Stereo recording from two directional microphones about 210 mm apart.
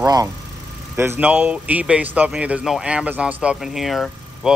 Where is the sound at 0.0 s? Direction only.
15° right (ahead or behind).